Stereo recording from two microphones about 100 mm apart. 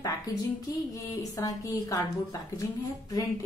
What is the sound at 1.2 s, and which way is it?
Speech, 40° left (ahead or behind).